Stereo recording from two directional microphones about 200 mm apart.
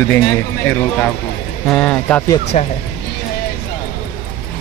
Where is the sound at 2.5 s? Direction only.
35° left (ahead or behind).